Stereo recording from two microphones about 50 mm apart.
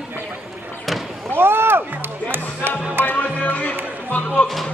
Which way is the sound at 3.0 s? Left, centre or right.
Left.